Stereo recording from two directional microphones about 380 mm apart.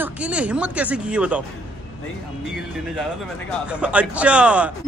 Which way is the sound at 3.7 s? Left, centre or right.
Centre.